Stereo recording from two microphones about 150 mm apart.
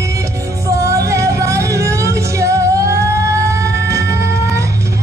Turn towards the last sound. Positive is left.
turn(degrees=-20)  # may be behind; listen again after turning